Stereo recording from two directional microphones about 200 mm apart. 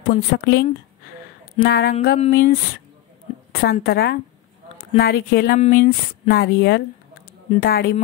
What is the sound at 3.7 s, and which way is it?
A woman's voice, 50° left (ahead or behind).